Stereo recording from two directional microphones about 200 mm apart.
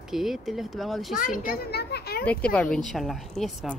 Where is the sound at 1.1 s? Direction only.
45° left (ahead or behind).